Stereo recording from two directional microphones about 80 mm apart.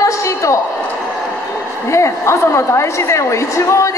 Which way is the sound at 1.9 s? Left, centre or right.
Left.